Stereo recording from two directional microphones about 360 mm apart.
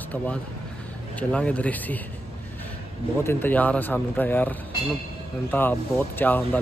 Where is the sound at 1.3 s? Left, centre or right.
Centre.